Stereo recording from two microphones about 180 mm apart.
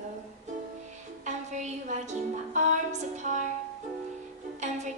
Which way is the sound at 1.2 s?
40° right (ahead or behind).